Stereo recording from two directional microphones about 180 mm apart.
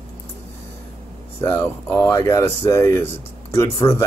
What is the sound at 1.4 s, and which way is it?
Speech, 15° left (ahead or behind).